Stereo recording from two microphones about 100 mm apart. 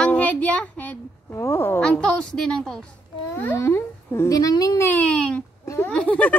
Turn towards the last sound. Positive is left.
turn(degrees=15)  # may be behind; listen again after turning